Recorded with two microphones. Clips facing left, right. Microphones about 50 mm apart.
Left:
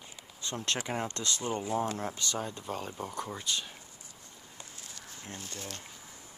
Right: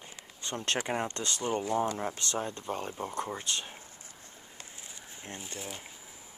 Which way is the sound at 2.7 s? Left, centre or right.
Right.